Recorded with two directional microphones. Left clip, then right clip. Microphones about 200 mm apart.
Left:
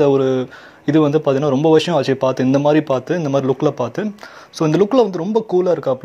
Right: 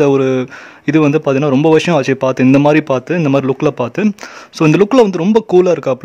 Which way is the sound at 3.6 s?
50° right (ahead or behind).